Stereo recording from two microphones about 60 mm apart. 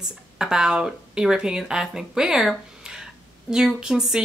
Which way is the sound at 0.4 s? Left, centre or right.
Centre.